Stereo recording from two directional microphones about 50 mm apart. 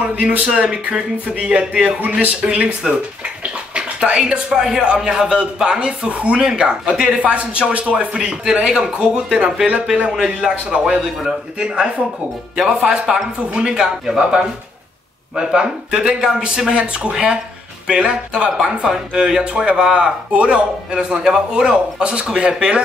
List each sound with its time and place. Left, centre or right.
0.1 s speech: right
0.5 s speech: right
3.7 s speech: centre